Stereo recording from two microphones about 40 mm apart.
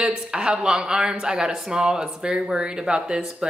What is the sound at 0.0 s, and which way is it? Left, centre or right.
Speech, centre.